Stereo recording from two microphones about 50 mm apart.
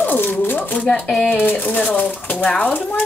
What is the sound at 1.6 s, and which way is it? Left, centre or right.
Speech, left.